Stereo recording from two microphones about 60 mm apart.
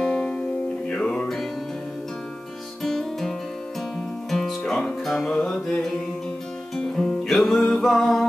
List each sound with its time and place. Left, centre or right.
0.0 s music: centre
2.8 s music: centre